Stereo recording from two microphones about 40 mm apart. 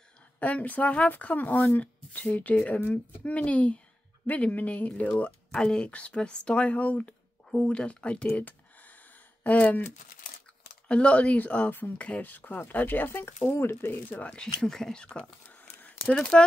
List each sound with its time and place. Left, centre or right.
0.4 s speech: left
1.1 s speech: left
4.3 s speech: left
5.5 s speech: centre
5.9 s speech: left
8.4 s a sound: left
9.4 s speech: left
10.9 s speech: left
13.6 s speech: left
14.3 s speech: centre
16.2 s speech: left